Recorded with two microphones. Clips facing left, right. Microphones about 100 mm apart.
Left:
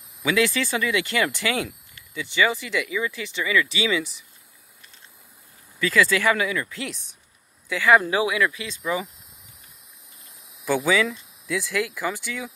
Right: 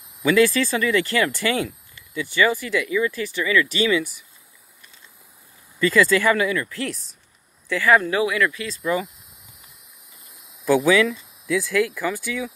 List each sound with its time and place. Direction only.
0.2 s speech: 5° left (ahead or behind)
5.8 s speech: centre (ahead or behind)
8.0 s speech: 25° left (ahead or behind)
10.7 s speech: centre (ahead or behind)